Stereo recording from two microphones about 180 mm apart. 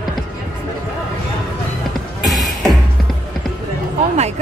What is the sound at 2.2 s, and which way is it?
Music, centre (ahead or behind).